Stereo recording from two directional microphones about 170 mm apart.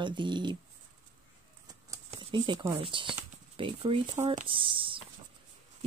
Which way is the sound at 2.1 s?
30° right (ahead or behind).